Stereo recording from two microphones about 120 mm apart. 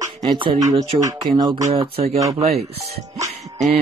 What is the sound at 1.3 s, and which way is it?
Speech, 40° right (ahead or behind).